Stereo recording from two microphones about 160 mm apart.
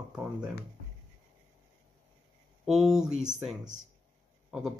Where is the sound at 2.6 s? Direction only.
Centre (ahead or behind).